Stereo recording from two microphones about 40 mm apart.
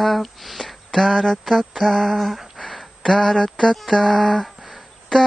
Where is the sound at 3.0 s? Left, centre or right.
Centre.